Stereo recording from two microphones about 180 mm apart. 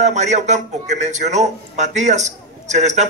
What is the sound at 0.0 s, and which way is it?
A man's voice, 40° right (ahead or behind).